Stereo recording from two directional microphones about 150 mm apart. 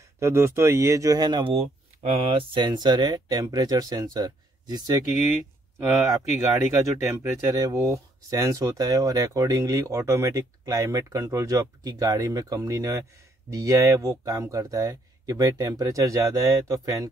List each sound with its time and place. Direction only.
0.2 s speech: 20° right (ahead or behind)
6.5 s speech: 20° right (ahead or behind)